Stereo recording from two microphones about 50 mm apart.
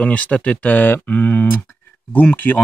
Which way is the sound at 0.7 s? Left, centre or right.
Left.